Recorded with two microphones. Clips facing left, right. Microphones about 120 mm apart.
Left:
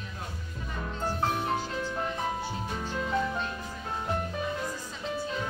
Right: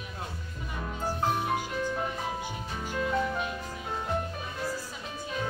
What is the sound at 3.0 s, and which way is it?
Music, 5° left (ahead or behind).